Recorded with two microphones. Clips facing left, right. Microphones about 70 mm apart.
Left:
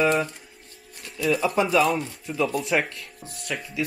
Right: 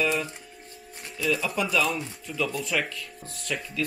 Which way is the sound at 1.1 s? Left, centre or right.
Left.